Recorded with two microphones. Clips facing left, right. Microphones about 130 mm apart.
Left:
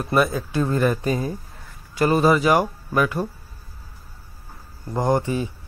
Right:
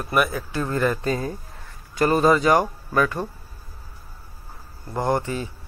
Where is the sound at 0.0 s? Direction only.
25° left (ahead or behind).